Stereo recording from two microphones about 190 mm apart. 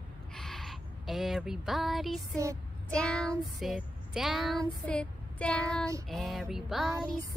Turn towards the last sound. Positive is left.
turn(degrees=0)  # may be behind; listen again after turning